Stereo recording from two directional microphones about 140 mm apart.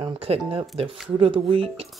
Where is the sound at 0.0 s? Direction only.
45° right (ahead or behind).